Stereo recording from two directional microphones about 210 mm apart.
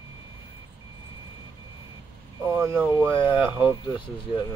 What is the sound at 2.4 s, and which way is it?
Speech, 10° right (ahead or behind).